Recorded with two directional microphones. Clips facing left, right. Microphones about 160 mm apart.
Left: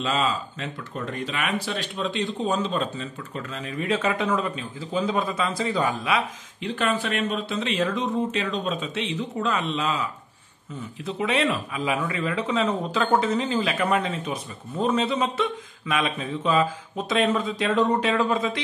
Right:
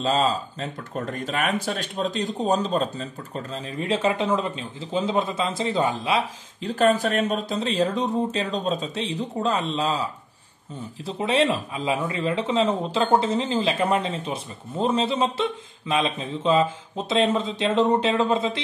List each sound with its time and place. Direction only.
0.0 s speech: 35° right (ahead or behind)
11.1 s speech: 30° right (ahead or behind)